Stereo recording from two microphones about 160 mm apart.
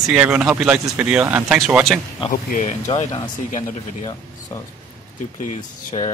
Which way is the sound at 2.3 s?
65° left (ahead or behind).